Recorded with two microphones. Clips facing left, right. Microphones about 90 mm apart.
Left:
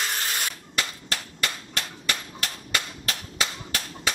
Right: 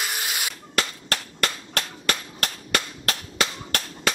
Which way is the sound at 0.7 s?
65° right (ahead or behind).